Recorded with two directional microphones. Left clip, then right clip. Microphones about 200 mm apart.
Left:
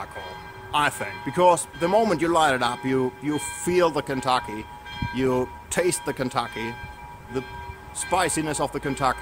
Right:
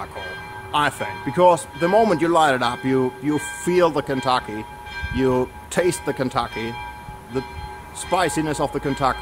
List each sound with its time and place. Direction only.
0.7 s speech: 20° left (ahead or behind)